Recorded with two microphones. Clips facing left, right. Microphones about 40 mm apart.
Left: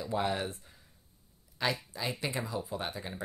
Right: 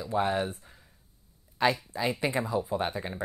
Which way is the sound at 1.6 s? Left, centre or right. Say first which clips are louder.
Right 7 dB; right.